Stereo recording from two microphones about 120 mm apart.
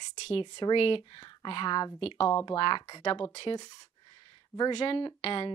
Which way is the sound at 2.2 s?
35° left (ahead or behind).